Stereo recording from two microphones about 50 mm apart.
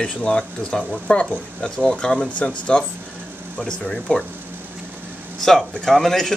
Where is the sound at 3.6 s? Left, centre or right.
Centre.